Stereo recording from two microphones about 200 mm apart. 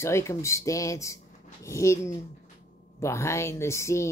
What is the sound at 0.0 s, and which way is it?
Speech, 15° left (ahead or behind).